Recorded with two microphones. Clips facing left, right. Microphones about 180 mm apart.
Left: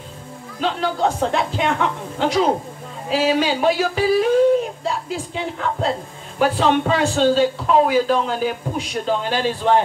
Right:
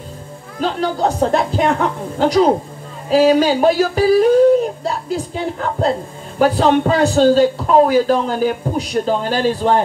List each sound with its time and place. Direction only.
0.6 s speech: 40° right (ahead or behind)